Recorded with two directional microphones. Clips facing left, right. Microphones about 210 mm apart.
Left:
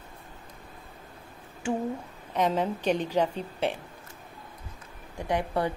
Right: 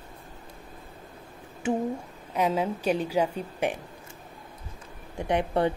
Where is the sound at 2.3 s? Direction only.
10° right (ahead or behind).